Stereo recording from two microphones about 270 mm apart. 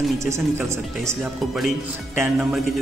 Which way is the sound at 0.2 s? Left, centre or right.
Centre.